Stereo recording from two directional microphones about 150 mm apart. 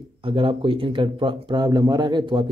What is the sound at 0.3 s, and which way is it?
A man's voice, 35° right (ahead or behind).